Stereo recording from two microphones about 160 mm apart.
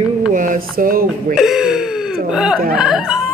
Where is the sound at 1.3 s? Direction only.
5° right (ahead or behind).